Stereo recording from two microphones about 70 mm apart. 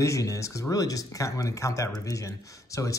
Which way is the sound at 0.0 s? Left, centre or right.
Left.